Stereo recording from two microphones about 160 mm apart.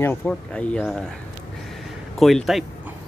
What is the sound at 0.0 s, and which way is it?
Speech, 10° left (ahead or behind).